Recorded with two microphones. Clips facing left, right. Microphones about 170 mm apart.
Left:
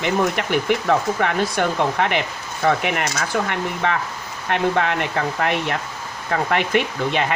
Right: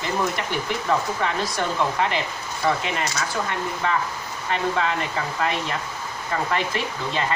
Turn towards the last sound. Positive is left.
turn(degrees=65)  # may be behind; listen again after turning